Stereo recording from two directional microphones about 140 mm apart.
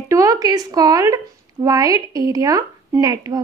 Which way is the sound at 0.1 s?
25° right (ahead or behind).